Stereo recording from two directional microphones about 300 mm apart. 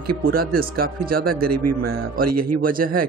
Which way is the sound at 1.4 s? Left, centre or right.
Right.